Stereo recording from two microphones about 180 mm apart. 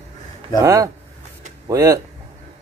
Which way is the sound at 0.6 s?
20° right (ahead or behind).